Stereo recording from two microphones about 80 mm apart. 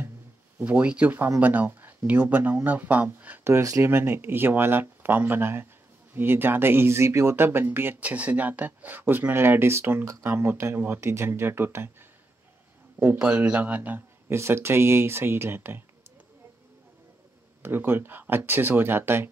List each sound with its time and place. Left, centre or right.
0.6 s speech: right
3.4 s speech: right
13.0 s speech: right
14.3 s speech: right
17.6 s speech: right